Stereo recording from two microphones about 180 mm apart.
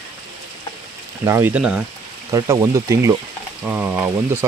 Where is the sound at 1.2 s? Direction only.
15° right (ahead or behind).